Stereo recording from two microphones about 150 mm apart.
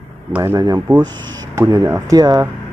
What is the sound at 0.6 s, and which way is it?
Speech, 25° right (ahead or behind).